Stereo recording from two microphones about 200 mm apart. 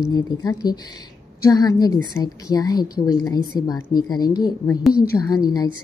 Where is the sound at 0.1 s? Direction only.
20° left (ahead or behind).